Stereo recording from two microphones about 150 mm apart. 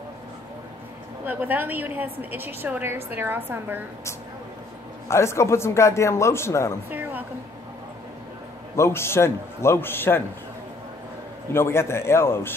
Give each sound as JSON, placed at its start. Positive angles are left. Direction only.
{"t": 1.2, "sound": "a woman's voice", "side_deg": -10}
{"t": 5.0, "sound": "a man's voice", "side_deg": 20}
{"t": 6.9, "sound": "a woman's voice", "side_deg": -10}
{"t": 8.7, "sound": "a man's voice", "side_deg": 20}
{"t": 11.5, "sound": "a man's voice", "side_deg": 15}